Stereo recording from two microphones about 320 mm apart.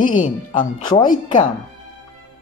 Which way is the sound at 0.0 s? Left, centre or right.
Left.